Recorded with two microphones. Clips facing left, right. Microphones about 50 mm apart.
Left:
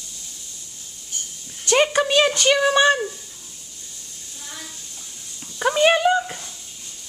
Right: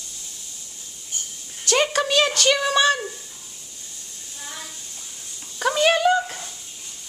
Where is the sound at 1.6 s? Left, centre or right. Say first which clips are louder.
Left 3 dB; centre.